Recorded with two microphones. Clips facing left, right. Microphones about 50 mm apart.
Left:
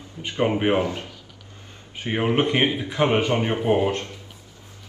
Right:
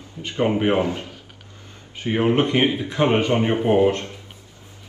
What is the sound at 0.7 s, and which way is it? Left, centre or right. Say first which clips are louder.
Speech: right 2 dB; right.